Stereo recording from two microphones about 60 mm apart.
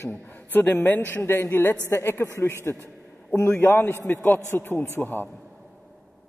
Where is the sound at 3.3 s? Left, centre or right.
Left.